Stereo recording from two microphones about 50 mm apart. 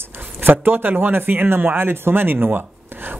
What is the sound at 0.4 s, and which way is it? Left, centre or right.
Speech, right.